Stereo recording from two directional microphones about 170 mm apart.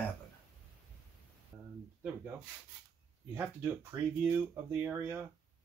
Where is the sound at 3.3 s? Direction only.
10° right (ahead or behind).